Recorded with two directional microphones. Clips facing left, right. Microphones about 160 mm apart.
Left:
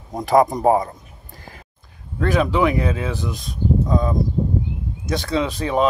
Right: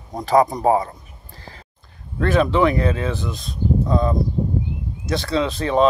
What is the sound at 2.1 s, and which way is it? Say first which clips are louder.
Speech: right 1 dB; 10° left (ahead or behind).